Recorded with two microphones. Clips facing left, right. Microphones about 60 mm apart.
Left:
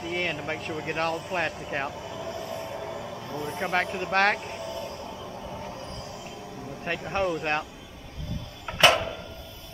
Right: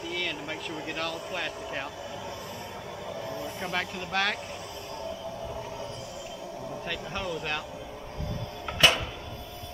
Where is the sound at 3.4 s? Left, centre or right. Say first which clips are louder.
Left 8 dB; left.